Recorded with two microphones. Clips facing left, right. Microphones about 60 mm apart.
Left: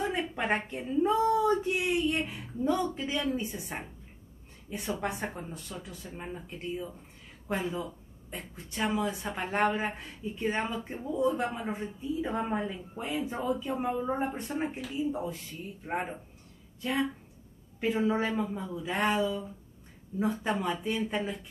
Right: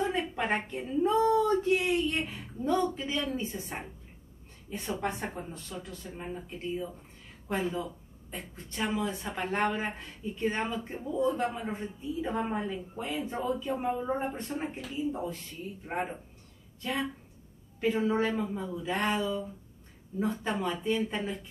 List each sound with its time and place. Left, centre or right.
0.0 s a sound: centre
0.7 s speech: centre
1.1 s speech: centre
2.4 s a woman's voice: centre